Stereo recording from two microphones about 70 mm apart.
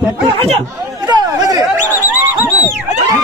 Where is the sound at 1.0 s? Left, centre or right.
Right.